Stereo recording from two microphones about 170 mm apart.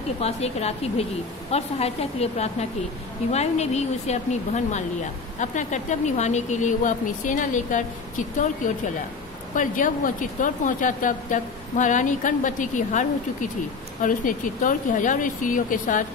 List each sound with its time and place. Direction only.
0.2 s speech: 40° left (ahead or behind)